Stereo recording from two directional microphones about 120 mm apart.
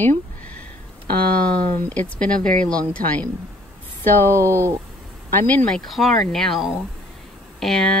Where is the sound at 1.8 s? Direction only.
10° left (ahead or behind).